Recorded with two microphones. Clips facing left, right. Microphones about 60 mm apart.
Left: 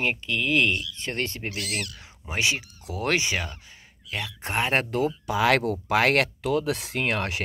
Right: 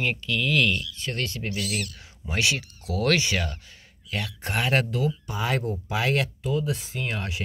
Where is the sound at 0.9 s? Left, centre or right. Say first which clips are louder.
Left 1 dB; left.